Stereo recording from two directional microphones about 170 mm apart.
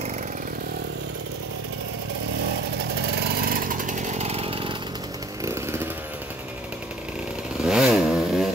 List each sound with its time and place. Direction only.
3.4 s chainsaw: 55° right (ahead or behind); by 4.7 s 30° right (ahead or behind)
5.4 s chainsaw: 15° right (ahead or behind)
7.6 s vehicle: 5° right (ahead or behind)